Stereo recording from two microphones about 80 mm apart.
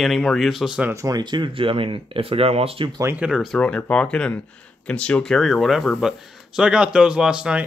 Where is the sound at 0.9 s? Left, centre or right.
Right.